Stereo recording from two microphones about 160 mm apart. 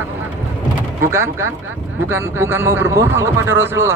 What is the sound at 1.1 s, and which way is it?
Speech, 15° right (ahead or behind).